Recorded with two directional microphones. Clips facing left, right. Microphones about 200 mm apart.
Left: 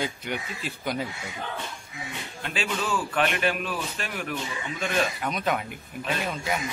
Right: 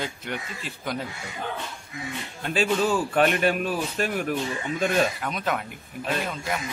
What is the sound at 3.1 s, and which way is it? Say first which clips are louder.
Speech: right 2 dB; 45° right (ahead or behind).